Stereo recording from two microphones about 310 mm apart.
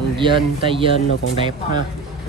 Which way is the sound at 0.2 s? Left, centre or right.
Centre.